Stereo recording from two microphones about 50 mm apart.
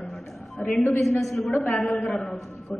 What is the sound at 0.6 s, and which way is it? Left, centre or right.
Speech, left.